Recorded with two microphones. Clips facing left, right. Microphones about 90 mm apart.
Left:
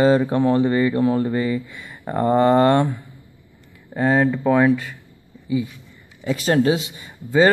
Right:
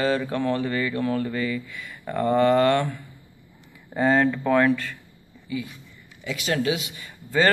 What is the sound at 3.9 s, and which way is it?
Speech, 5° left (ahead or behind).